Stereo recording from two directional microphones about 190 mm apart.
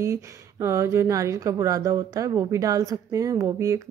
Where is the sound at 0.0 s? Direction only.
15° right (ahead or behind).